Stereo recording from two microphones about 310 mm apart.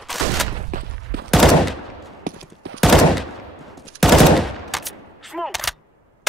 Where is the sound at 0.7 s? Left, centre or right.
Right.